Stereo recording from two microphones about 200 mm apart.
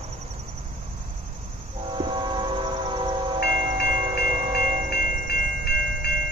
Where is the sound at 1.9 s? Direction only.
20° right (ahead or behind).